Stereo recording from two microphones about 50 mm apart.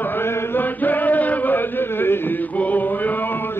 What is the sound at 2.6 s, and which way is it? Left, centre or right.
Music, left.